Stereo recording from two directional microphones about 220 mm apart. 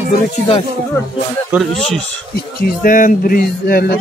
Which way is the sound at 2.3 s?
40° left (ahead or behind).